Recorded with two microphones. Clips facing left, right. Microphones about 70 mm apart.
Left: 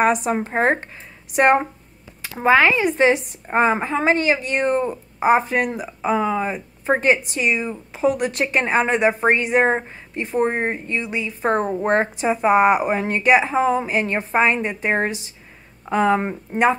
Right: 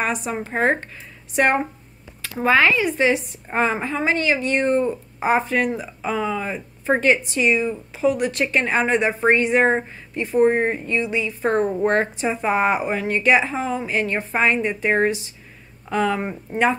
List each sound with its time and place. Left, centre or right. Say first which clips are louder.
0.0 s a woman's voice: left 6 dB; left
2.2 s a sound: left 2 dB; centre
2.5 s a woman's voice: left 2 dB; left
12.9 s a woman's voice: left 1 dB; left